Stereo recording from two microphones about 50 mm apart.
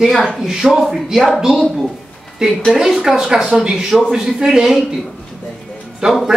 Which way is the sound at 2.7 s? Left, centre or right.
Centre.